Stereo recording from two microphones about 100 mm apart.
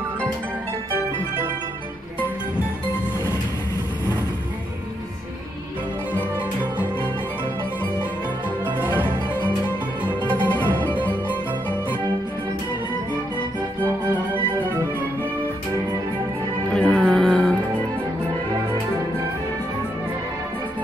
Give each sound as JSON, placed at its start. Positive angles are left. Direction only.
{"t": 8.8, "sound": "music", "side_deg": -20}
{"t": 10.0, "sound": "music", "side_deg": 20}
{"t": 16.7, "sound": "music", "side_deg": 10}